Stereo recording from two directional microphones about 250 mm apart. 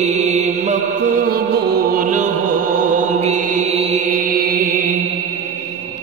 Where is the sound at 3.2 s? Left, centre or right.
Right.